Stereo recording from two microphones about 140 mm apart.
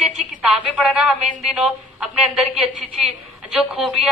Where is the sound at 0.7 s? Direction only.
5° right (ahead or behind).